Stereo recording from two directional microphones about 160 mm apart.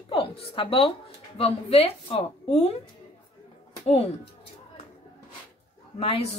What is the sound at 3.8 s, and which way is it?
Speech, 40° left (ahead or behind).